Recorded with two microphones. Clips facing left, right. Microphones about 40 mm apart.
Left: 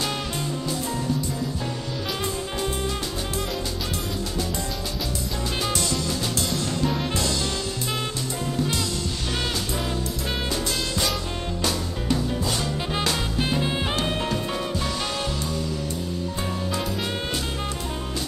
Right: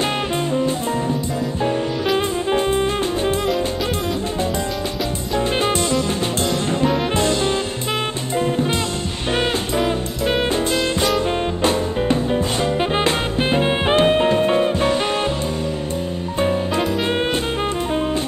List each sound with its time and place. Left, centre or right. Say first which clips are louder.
1.6 s music: right 10 dB; right
5.6 s music: right 7 dB; right
7.2 s music: right 8 dB; right
9.8 s music: right 8 dB; right
16.3 s music: right 12 dB; right